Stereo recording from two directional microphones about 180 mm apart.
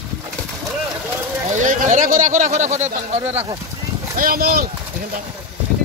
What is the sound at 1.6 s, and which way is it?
Speech, 45° right (ahead or behind).